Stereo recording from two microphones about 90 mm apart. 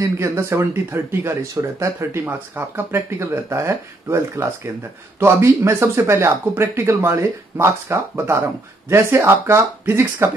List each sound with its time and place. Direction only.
0.0 s speech: 30° right (ahead or behind)